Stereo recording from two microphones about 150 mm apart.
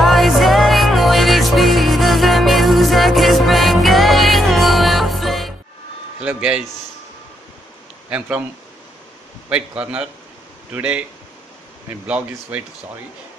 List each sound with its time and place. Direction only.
0.0 s music: centre (ahead or behind)
6.2 s speech: 5° right (ahead or behind)
8.1 s a man's voice: 10° right (ahead or behind)
9.5 s a man's voice: 10° right (ahead or behind)
12.1 s a man's voice: 10° right (ahead or behind)